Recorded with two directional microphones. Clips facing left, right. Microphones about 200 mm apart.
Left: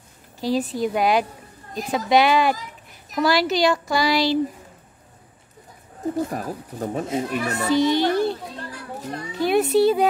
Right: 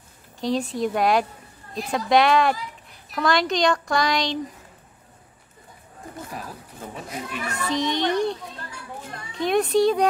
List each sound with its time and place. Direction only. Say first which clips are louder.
0.4 s speech: left 1 dB; 5° left (ahead or behind)
6.1 s a child's voice: left 7 dB; 45° left (ahead or behind)
7.7 s speech: left 6 dB; 5° left (ahead or behind)
8.6 s children playing: left 5 dB; 35° left (ahead or behind)
9.3 s speech: left 2 dB; 5° left (ahead or behind)